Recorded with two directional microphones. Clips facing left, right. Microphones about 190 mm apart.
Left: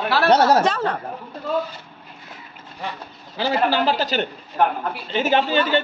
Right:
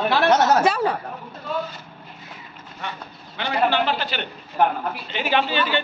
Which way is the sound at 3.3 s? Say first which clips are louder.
Left 1 dB; 35° left (ahead or behind).